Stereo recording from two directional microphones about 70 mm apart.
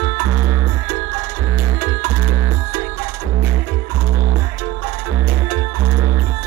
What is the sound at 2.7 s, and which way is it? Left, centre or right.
Music, left.